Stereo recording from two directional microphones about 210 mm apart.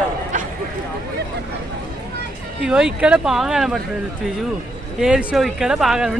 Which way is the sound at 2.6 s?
5° right (ahead or behind).